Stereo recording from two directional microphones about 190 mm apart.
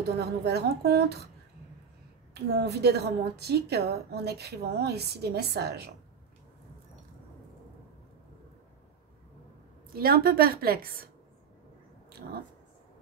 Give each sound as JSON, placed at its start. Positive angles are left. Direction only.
{"t": 0.2, "sound": "a woman's voice", "side_deg": -60}
{"t": 2.3, "sound": "a woman's voice", "side_deg": -60}
{"t": 9.9, "sound": "a woman's voice", "side_deg": -50}